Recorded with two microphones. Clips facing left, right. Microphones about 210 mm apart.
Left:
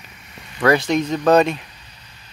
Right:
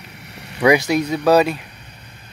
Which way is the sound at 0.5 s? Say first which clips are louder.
Right 2 dB; 15° right (ahead or behind).